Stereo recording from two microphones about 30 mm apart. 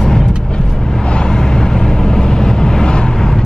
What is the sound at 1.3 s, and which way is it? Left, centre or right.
Vehicle, left.